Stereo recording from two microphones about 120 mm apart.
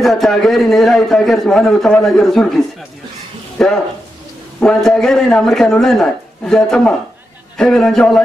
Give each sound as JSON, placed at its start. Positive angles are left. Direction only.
{"t": 0.0, "sound": "a man's voice", "side_deg": 0}